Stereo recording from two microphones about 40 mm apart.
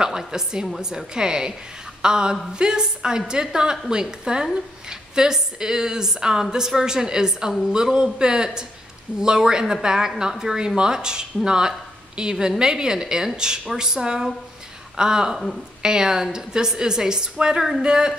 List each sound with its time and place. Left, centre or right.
0.0 s a woman's voice: centre